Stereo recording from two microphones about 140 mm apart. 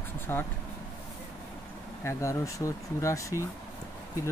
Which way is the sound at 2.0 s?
20° left (ahead or behind).